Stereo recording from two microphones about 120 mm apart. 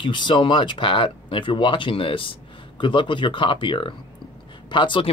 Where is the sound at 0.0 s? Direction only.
40° left (ahead or behind).